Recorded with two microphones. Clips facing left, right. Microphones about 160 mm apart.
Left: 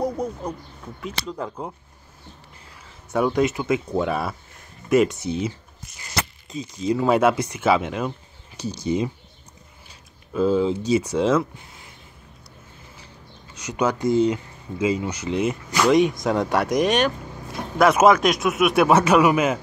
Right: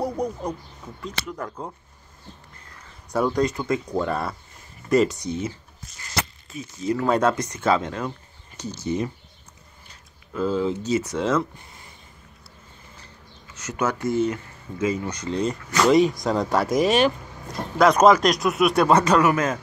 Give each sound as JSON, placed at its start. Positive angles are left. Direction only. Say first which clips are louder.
{"t": 0.0, "sound": "speech", "louder": "even", "side_deg": -10}
{"t": 1.3, "sound": "speech", "louder": "left 2 dB", "side_deg": 15}
{"t": 3.1, "sound": "speech", "louder": "left 2 dB", "side_deg": 5}
{"t": 6.5, "sound": "speech", "louder": "left 2 dB", "side_deg": 20}
{"t": 9.8, "sound": "a sound", "louder": "left 4 dB", "side_deg": 15}
{"t": 10.8, "sound": "speech", "louder": "left 3 dB", "side_deg": 10}
{"t": 13.6, "sound": "speech", "louder": "left 3 dB", "side_deg": 15}